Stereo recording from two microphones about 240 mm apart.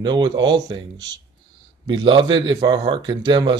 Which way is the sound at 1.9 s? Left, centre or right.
Centre.